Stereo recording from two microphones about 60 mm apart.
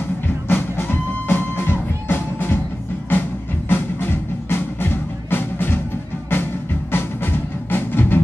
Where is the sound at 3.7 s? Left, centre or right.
Left.